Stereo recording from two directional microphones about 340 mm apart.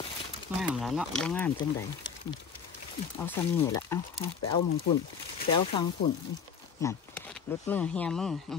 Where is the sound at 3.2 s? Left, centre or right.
Centre.